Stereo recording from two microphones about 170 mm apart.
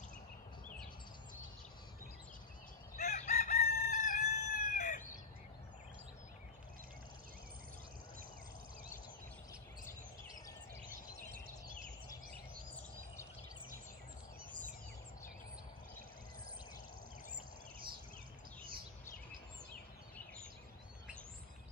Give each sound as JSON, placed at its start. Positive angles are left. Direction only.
{"t": 3.0, "sound": "chicken", "side_deg": 45}